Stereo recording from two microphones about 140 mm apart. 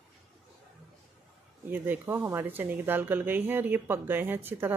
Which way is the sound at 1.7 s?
15° right (ahead or behind).